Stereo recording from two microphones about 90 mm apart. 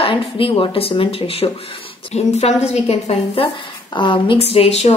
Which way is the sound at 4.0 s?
70° left (ahead or behind).